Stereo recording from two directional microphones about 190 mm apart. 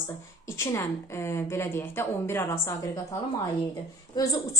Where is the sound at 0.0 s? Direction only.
15° left (ahead or behind).